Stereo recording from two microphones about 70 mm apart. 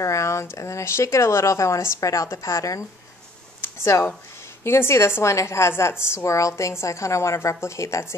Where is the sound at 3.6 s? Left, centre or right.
Left.